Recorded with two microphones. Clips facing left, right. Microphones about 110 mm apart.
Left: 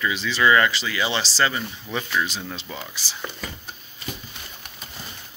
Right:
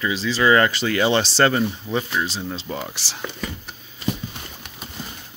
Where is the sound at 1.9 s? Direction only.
30° right (ahead or behind).